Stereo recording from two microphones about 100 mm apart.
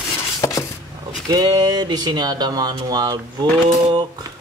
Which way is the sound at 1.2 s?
40° right (ahead or behind).